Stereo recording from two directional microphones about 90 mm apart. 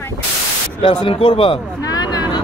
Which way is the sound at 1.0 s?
85° left.